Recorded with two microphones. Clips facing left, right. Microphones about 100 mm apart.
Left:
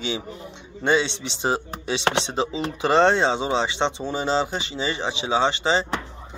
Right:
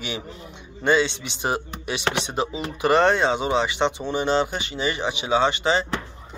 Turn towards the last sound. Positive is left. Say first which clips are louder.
# right 1 dB
turn(degrees=25)  # may be behind; listen again after turning